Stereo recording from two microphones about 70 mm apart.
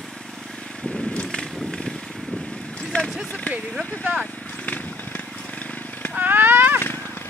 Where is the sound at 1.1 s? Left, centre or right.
Centre.